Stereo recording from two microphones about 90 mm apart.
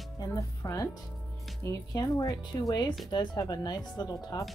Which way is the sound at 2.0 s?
45° left (ahead or behind).